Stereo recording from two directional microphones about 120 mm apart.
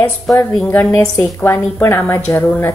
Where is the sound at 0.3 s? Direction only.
30° left (ahead or behind).